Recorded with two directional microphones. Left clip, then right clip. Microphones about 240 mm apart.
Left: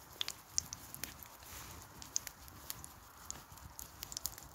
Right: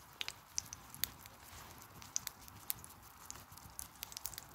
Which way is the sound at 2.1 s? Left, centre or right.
Centre.